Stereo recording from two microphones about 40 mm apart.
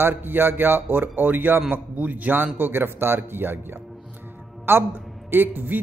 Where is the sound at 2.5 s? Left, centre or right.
Right.